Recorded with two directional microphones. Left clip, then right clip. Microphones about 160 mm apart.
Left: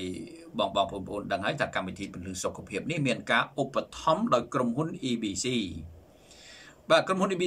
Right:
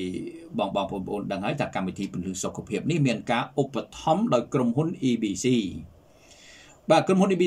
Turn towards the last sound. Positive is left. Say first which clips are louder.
# right 3 dB
turn(degrees=-20)  # may be behind; listen again after turning